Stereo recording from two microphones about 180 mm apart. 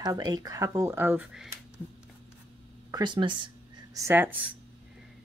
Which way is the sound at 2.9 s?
25° right (ahead or behind).